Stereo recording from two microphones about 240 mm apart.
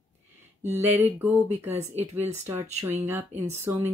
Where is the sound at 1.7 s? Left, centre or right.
Right.